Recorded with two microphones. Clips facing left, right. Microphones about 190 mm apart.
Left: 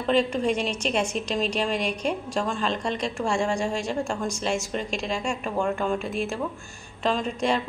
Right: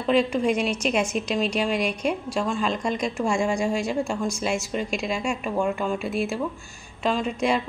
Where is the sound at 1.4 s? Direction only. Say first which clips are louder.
Right 1 dB; 10° right (ahead or behind).